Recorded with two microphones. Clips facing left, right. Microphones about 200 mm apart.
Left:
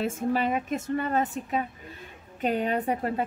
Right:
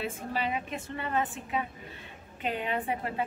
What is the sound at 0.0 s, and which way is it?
A woman's voice, 45° left (ahead or behind).